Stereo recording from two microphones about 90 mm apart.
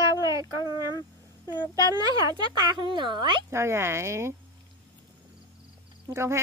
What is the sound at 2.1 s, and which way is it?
Speech, 50° right (ahead or behind).